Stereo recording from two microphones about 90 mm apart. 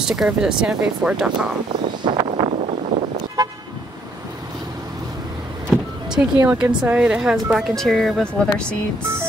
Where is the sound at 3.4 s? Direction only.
50° right (ahead or behind).